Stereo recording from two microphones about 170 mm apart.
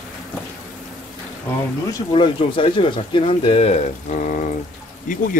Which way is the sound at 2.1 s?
30° left (ahead or behind).